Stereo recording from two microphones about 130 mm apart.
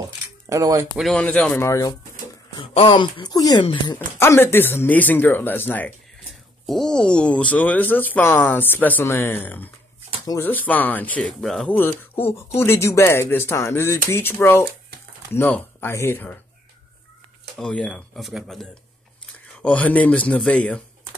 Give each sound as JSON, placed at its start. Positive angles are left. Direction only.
{"t": 0.5, "sound": "speech", "side_deg": -25}
{"t": 1.1, "sound": "speech", "side_deg": 10}
{"t": 1.6, "sound": "speech", "side_deg": 25}
{"t": 2.5, "sound": "speech", "side_deg": 40}
{"t": 4.2, "sound": "speech", "side_deg": 20}
{"t": 6.6, "sound": "speech", "side_deg": 0}
{"t": 11.7, "sound": "speech", "side_deg": 15}
{"t": 17.6, "sound": "speech", "side_deg": 5}
{"t": 19.6, "sound": "speech", "side_deg": 10}